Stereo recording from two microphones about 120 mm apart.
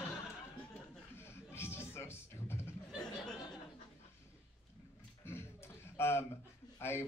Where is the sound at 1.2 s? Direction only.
20° left (ahead or behind).